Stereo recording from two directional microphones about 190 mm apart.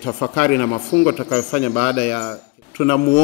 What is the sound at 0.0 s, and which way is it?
A man's voice, 20° left (ahead or behind).